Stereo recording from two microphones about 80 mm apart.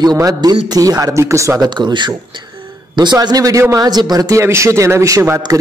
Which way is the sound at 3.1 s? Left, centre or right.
Right.